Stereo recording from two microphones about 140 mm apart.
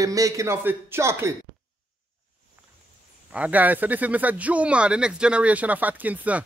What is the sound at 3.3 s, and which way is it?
Speech, 10° right (ahead or behind).